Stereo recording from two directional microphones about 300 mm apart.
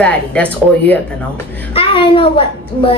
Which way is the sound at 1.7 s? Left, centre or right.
Centre.